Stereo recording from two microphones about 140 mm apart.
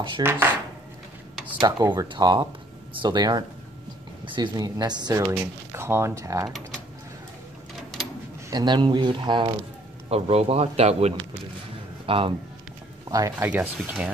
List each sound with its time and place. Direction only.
0.2 s speech: 15° right (ahead or behind)
1.6 s speech: 30° right (ahead or behind)
5.2 s speech: 15° right (ahead or behind)
8.5 s speech: 30° right (ahead or behind)
10.0 s speech: 45° right (ahead or behind)
13.1 s speech: 25° right (ahead or behind)
13.5 s speech: 10° right (ahead or behind)